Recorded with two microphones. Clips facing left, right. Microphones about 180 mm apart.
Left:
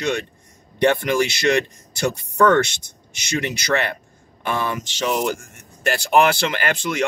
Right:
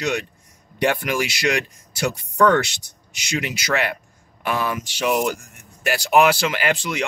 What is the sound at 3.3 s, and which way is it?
Speech, 10° right (ahead or behind).